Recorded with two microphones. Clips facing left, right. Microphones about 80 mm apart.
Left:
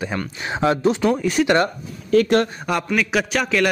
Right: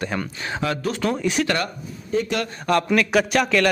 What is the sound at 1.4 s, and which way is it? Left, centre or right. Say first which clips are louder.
Speech: left 6 dB; left.